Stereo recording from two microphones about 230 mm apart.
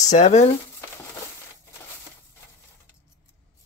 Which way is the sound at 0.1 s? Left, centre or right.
Left.